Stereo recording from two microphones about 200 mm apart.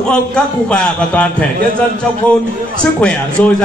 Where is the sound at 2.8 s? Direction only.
5° left (ahead or behind).